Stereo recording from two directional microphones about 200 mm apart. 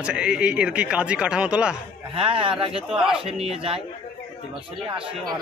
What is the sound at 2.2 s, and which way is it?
Speech, 25° right (ahead or behind).